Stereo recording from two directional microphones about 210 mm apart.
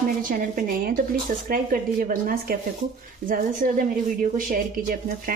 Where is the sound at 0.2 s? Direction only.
40° right (ahead or behind).